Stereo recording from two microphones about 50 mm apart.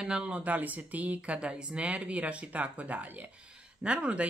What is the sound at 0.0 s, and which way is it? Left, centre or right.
Speech, centre.